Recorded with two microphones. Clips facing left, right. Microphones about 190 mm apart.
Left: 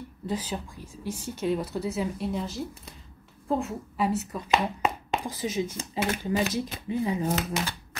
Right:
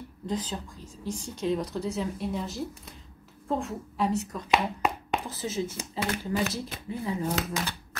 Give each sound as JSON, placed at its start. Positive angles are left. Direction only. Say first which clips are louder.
{"t": 0.3, "sound": "a woman's voice", "louder": "left 1 dB", "side_deg": 10}
{"t": 4.5, "sound": "whispering", "louder": "left 1 dB", "side_deg": 0}
{"t": 5.2, "sound": "speech", "louder": "left 2 dB", "side_deg": 15}